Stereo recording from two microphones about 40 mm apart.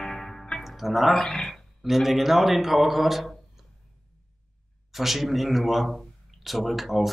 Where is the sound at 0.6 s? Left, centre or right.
Centre.